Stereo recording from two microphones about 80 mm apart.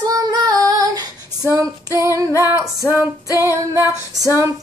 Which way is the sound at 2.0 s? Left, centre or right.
Right.